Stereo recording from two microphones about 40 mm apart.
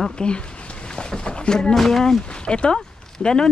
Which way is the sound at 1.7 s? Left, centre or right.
Centre.